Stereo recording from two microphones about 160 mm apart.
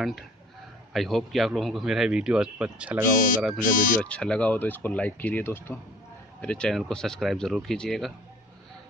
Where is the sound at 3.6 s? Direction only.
60° left (ahead or behind).